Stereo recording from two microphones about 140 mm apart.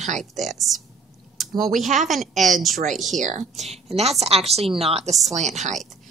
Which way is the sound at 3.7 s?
50° right (ahead or behind).